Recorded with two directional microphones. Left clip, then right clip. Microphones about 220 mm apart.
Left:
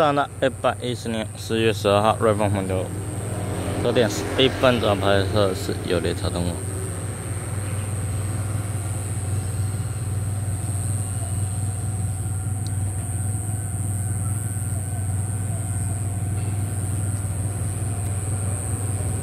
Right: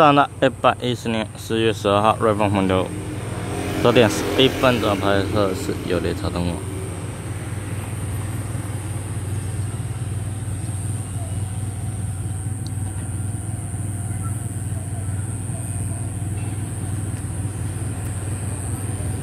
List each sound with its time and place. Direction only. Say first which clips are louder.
0.0 s speech: right 5 dB; 10° right (ahead or behind)
2.6 s speech: right 6 dB; 20° right (ahead or behind)
4.5 s speech: right 1 dB; centre (ahead or behind)